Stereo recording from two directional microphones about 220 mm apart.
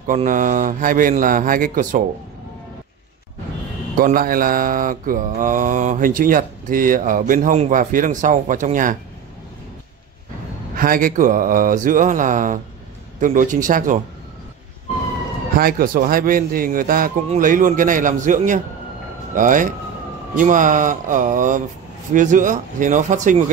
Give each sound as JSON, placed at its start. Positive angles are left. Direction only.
{"t": 0.0, "sound": "mantra", "side_deg": -35}
{"t": 3.9, "sound": "mantra", "side_deg": -40}
{"t": 10.8, "sound": "mantra", "side_deg": -40}
{"t": 15.5, "sound": "mantra", "side_deg": -40}